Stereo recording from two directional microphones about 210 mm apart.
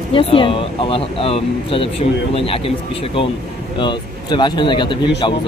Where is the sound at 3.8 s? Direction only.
20° left (ahead or behind).